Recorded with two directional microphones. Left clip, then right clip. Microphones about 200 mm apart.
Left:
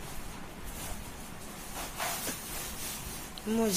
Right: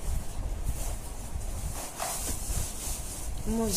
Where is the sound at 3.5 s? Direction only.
Centre (ahead or behind).